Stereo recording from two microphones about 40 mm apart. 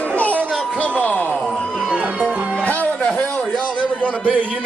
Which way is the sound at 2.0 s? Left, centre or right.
Right.